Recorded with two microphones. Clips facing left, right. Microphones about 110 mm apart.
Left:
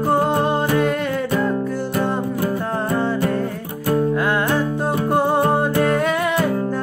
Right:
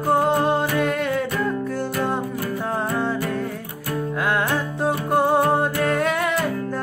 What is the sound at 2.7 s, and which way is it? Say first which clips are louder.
Music: left 3 dB; centre (ahead or behind).